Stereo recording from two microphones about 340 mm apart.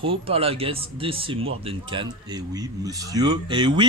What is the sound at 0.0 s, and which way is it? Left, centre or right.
Speech, centre.